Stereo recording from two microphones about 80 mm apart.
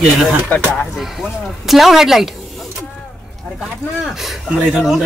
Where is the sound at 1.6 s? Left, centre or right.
Centre.